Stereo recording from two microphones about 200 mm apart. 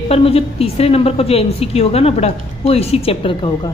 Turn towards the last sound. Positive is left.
turn(degrees=25)  # may be behind; listen again after turning